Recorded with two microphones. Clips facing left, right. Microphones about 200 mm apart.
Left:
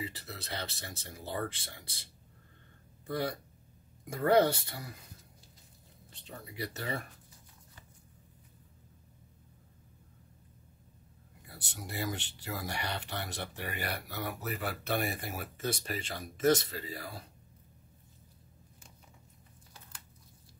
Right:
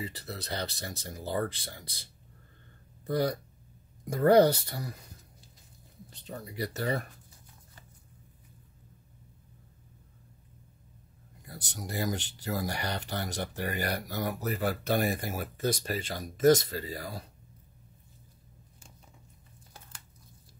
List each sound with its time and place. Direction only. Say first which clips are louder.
0.0 s speech: right 3 dB; 40° right (ahead or behind)
3.1 s speech: right 6 dB; 40° right (ahead or behind)
6.2 s speech: right 5 dB; 40° right (ahead or behind)
11.4 s speech: right 4 dB; 40° right (ahead or behind)